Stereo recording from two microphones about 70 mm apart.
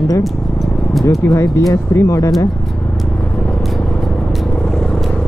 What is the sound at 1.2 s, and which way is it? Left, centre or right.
Speech, left.